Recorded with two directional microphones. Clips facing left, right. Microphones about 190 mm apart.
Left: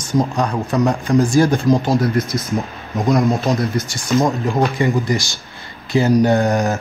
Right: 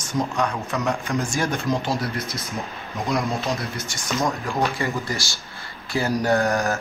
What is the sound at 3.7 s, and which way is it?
Speech, 35° left (ahead or behind).